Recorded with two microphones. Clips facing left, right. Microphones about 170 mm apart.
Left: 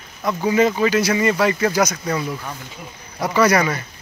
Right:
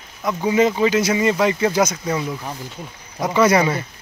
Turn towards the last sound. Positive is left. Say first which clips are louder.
# right 1 dB
turn(degrees=-25)  # may be behind; listen again after turning